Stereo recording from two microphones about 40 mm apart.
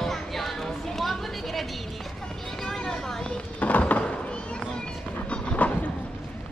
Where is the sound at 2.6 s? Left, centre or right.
Centre.